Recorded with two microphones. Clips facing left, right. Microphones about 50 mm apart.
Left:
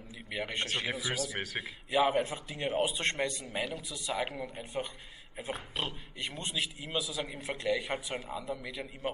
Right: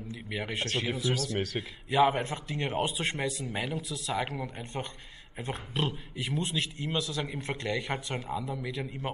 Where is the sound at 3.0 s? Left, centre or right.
Centre.